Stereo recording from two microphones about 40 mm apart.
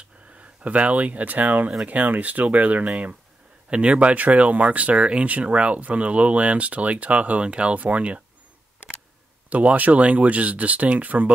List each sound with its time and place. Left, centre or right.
0.4 s speech: right
9.5 s speech: right